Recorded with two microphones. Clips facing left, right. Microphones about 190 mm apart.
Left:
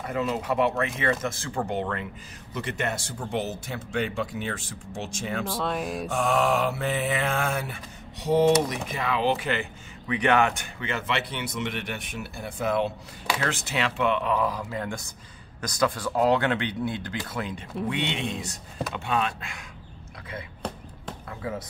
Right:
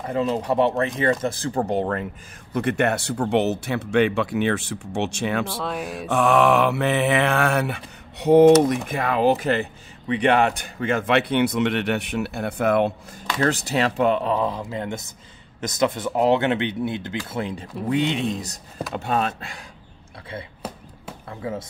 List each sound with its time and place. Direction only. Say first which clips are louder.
0.0 s speech: right 5 dB; 30° right (ahead or behind)
2.5 s speech: right 9 dB; 60° right (ahead or behind)
5.5 s speech: even; centre (ahead or behind)
6.1 s speech: right 7 dB; 70° right (ahead or behind)
13.4 s speech: right 9 dB; 40° right (ahead or behind)
20.6 s chop: left 2 dB; 5° right (ahead or behind)
21.3 s speech: right 4 dB; 25° right (ahead or behind)